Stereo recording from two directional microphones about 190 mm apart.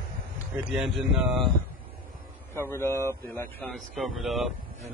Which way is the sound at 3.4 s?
10° left (ahead or behind).